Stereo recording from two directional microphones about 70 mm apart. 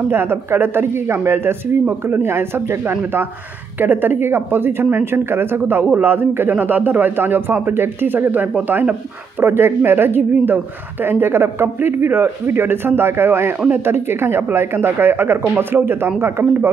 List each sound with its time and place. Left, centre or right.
0.1 s a woman's voice: right
9.4 s a woman's voice: right